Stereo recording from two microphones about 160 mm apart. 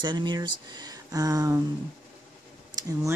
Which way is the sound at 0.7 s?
25° right (ahead or behind).